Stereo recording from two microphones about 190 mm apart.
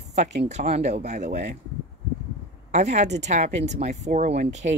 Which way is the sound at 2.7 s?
35° right (ahead or behind).